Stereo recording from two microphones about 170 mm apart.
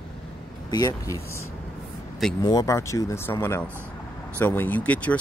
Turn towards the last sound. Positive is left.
turn(degrees=10)  # may be behind; listen again after turning